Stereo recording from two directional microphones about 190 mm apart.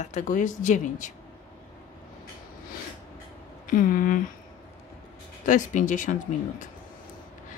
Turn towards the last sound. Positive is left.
turn(degrees=40)  # may be behind; listen again after turning